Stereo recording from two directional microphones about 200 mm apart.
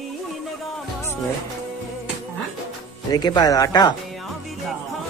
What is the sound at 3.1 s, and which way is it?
Speech, 20° left (ahead or behind).